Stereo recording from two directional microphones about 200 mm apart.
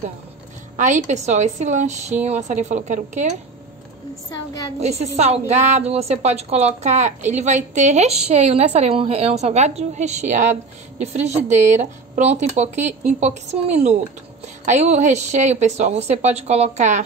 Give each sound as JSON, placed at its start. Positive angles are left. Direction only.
{"t": 0.7, "sound": "speech", "side_deg": -40}
{"t": 4.7, "sound": "speech", "side_deg": -30}